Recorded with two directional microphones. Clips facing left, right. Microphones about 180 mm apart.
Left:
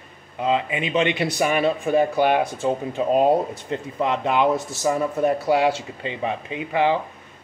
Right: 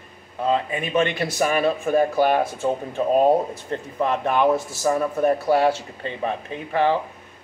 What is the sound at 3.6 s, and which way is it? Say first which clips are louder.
A man's voice: even; 15° left (ahead or behind).